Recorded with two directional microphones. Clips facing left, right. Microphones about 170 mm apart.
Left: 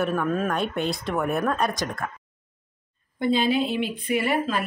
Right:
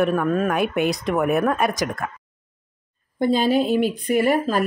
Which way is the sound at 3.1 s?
40° right (ahead or behind).